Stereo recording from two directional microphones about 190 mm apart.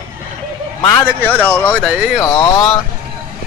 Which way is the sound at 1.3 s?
10° left (ahead or behind).